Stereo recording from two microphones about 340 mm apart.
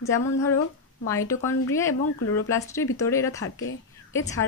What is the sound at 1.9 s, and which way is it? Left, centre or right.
Speech, left.